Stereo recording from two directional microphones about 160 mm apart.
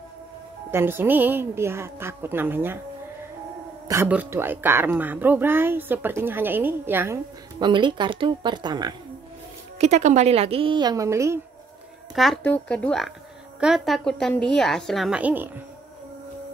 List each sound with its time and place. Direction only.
0.7 s speech: 15° right (ahead or behind)
3.9 s speech: 15° right (ahead or behind)
7.5 s speech: 30° right (ahead or behind)
9.8 s a woman's voice: 45° right (ahead or behind); by 11.3 s 20° right (ahead or behind)
12.4 s a woman's voice: 10° left (ahead or behind); by 15.6 s 10° right (ahead or behind)